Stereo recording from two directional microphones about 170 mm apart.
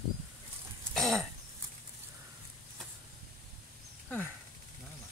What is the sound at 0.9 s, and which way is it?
Throat clearing, centre (ahead or behind).